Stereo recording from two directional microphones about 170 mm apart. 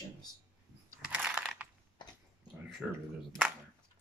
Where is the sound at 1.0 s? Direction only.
5° right (ahead or behind).